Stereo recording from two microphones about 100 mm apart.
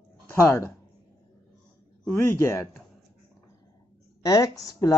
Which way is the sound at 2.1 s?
25° left (ahead or behind).